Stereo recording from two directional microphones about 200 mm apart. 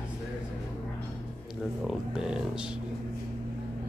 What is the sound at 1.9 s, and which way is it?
Speech, 5° right (ahead or behind).